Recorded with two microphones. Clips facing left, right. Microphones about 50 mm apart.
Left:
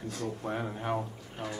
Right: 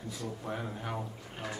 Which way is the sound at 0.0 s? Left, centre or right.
Left.